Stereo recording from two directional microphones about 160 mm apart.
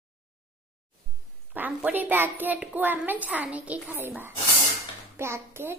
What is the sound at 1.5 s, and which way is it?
A child's voice, 10° right (ahead or behind).